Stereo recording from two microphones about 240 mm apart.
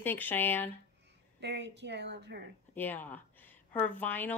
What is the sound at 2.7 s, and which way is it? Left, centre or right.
A woman's voice, centre.